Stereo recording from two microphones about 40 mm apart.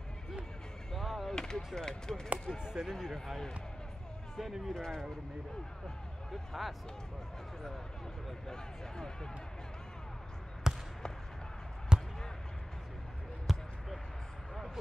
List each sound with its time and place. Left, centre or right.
0.9 s a sound: centre
1.3 s a sound: centre
1.8 s speech: centre
2.6 s speech: centre
2.9 s speech: centre
4.7 s speech: centre
6.3 s speech: centre
8.5 s speech: centre
10.6 s basketball bounce: centre
11.9 s basketball bounce: right
13.5 s basketball bounce: centre